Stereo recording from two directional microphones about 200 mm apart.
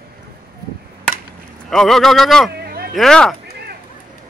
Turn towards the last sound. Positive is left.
turn(degrees=5)  # may be behind; listen again after turning